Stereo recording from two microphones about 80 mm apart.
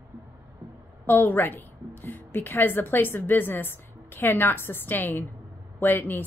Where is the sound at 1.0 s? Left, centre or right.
Left.